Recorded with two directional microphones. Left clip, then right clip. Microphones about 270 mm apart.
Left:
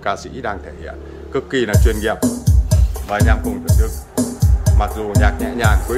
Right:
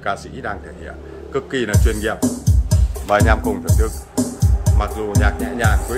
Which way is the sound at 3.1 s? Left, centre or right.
Centre.